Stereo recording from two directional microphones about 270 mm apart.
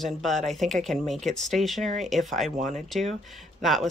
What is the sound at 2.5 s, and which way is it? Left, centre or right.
Speech, right.